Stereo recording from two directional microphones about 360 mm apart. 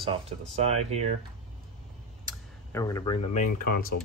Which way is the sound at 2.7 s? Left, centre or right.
Centre.